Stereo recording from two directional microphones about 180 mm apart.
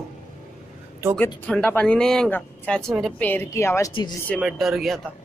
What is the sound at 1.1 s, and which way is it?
Speech, 5° left (ahead or behind).